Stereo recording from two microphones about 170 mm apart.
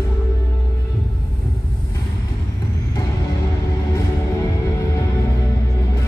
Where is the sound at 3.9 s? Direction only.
20° left (ahead or behind).